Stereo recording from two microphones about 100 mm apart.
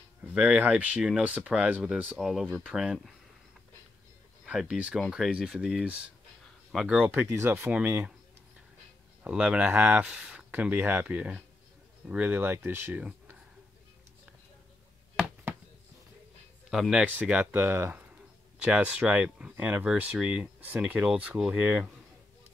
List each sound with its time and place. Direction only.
0.3 s speech: 10° right (ahead or behind)
2.1 s speech: centre (ahead or behind)
4.5 s speech: 10° right (ahead or behind)
7.0 s speech: 15° right (ahead or behind)
7.2 s speech: 30° right (ahead or behind)
9.2 s speech: 10° right (ahead or behind)
16.9 s speech: 10° right (ahead or behind)
18.6 s speech: 10° right (ahead or behind)